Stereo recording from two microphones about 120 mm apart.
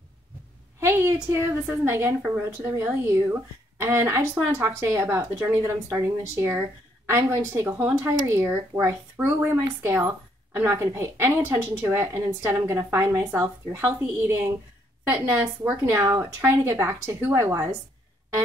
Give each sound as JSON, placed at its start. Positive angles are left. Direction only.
{"t": 0.7, "sound": "a woman's voice", "side_deg": -20}